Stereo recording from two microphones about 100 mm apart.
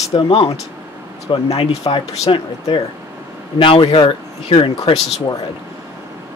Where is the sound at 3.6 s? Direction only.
60° left (ahead or behind).